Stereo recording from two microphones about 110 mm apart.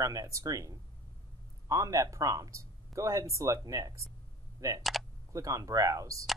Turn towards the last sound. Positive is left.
turn(degrees=-30)  # may be behind; listen again after turning